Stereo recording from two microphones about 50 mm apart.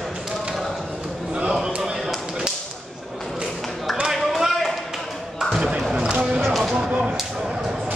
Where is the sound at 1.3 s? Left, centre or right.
Right.